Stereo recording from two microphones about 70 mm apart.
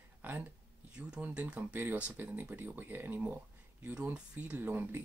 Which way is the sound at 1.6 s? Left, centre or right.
Right.